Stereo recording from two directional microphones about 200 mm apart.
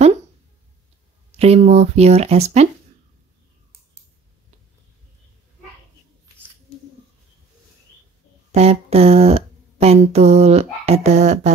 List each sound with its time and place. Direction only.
1.4 s speech: 30° right (ahead or behind)
8.5 s speech: 30° right (ahead or behind)